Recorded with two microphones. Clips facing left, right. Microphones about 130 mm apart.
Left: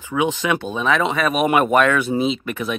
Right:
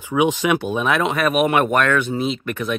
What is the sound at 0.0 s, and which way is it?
Speech, 15° right (ahead or behind).